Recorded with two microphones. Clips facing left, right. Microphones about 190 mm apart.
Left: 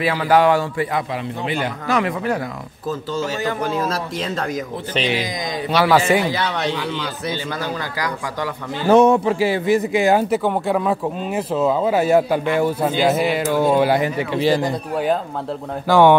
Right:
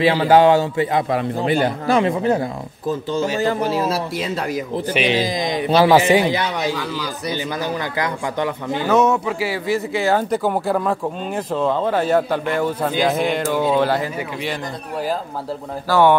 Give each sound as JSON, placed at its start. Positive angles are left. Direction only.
{"t": 0.0, "sound": "speech", "side_deg": -25}
{"t": 1.1, "sound": "speech", "side_deg": -40}
{"t": 3.6, "sound": "speech", "side_deg": -5}
{"t": 5.1, "sound": "speech", "side_deg": -30}
{"t": 6.6, "sound": "speech", "side_deg": -10}
{"t": 8.8, "sound": "a man's voice", "side_deg": 30}
{"t": 9.7, "sound": "speech", "side_deg": 15}
{"t": 10.3, "sound": "speech", "side_deg": 0}
{"t": 14.3, "sound": "a man's voice", "side_deg": 30}
{"t": 15.9, "sound": "speech", "side_deg": 15}